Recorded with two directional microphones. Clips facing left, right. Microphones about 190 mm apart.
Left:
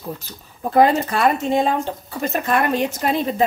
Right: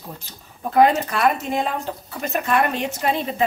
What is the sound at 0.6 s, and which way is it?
Speech, 30° left (ahead or behind).